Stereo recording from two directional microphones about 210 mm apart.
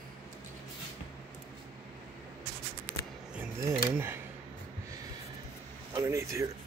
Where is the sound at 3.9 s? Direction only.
10° right (ahead or behind).